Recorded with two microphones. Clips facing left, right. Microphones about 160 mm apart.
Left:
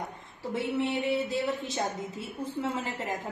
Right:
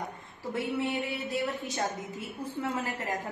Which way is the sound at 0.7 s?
25° left (ahead or behind).